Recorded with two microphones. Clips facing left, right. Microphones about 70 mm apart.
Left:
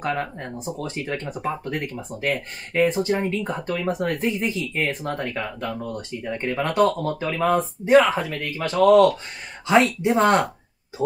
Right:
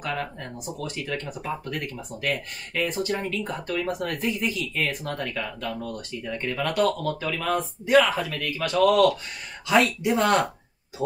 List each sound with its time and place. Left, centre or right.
0.0 s speech: left